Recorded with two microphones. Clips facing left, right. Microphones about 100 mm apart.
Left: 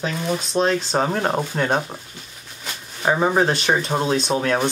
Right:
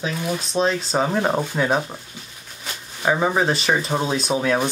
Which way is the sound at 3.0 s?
5° left (ahead or behind).